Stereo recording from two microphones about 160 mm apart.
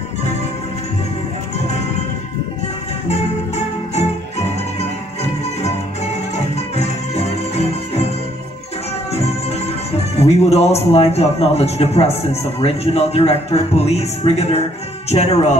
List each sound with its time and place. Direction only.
3.1 s music: 45° left (ahead or behind)
6.5 s music: 40° left (ahead or behind)
9.1 s music: 40° left (ahead or behind)
10.1 s a man's voice: 40° left (ahead or behind)